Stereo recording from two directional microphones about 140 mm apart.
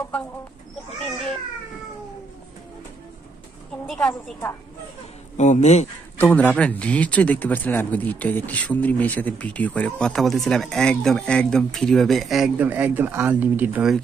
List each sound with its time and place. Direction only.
3.8 s a woman's voice: centre (ahead or behind)
5.4 s speech: 55° left (ahead or behind)
6.1 s a man's voice: 15° left (ahead or behind); by 13.9 s 10° right (ahead or behind)